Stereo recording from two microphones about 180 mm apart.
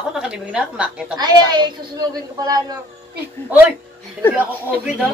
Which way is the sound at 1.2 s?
20° right (ahead or behind).